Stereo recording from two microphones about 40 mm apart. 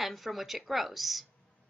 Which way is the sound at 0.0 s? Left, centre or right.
Centre.